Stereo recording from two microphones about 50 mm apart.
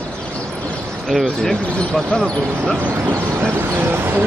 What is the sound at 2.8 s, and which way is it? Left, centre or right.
Speech, right.